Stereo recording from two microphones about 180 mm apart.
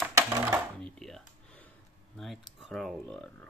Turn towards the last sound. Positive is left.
turn(degrees=5)  # may be behind; listen again after turning